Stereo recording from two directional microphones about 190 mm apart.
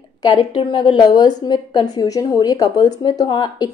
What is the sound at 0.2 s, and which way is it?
A woman's voice, 25° left (ahead or behind).